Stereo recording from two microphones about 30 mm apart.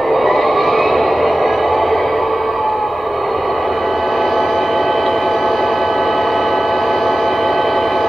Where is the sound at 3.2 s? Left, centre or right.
Centre.